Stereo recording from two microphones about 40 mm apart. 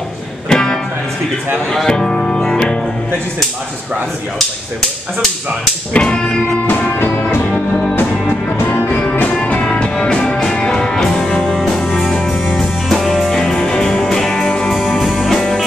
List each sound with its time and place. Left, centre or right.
0.5 s music: centre
1.9 s music: centre
6.0 s music: left
6.7 s music: left
8.6 s music: left
9.4 s music: left
12.0 s music: centre
12.9 s music: centre
13.3 s music: centre